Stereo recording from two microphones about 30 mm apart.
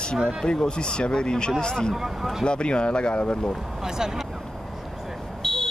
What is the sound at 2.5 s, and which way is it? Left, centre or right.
Speech, left.